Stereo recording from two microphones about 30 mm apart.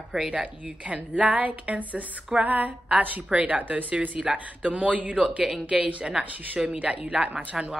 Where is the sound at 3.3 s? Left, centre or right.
Right.